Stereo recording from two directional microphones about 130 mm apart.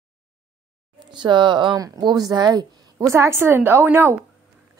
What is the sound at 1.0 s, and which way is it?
Speech, 35° right (ahead or behind).